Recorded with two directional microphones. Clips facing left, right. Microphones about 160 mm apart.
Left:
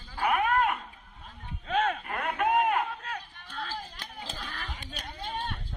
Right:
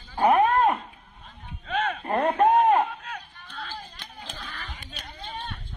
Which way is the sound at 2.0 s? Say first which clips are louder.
Right 8 dB; 35° right (ahead or behind).